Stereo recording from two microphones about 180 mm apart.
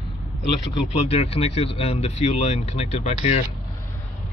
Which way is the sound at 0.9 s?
35° left (ahead or behind).